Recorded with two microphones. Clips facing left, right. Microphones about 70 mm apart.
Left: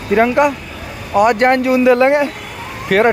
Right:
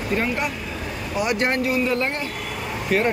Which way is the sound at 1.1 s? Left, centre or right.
Left.